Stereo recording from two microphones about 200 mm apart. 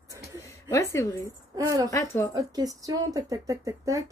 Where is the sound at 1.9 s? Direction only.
15° left (ahead or behind).